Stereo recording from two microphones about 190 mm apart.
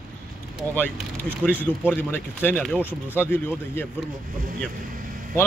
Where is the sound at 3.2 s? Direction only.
10° left (ahead or behind).